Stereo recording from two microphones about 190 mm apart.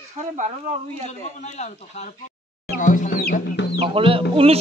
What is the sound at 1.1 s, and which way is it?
A man's voice, 35° left (ahead or behind).